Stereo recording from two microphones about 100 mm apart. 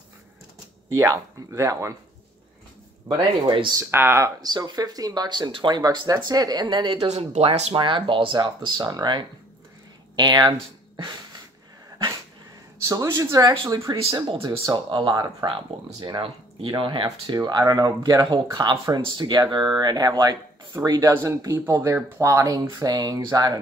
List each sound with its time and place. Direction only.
0.9 s speech: 30° right (ahead or behind)
3.1 s speech: 55° right (ahead or behind)
3.9 s speech: 25° right (ahead or behind)
4.4 s speech: 45° right (ahead or behind)
5.8 s speech: 40° right (ahead or behind)
7.0 s speech: 90° right
7.7 s speech: 55° right (ahead or behind)
12.8 s speech: 35° right (ahead or behind)
14.1 s speech: 55° right (ahead or behind)
17.3 s speech: 40° right (ahead or behind)